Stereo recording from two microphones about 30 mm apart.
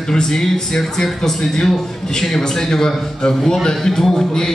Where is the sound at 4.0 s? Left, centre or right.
Centre.